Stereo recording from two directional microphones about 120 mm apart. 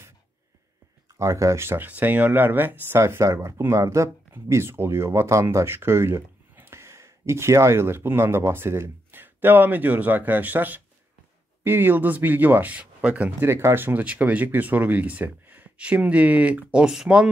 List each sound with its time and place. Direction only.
1.1 s speech: 25° right (ahead or behind); by 17.3 s 5° right (ahead or behind)